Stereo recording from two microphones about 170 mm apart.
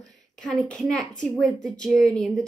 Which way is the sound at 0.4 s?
5° left (ahead or behind).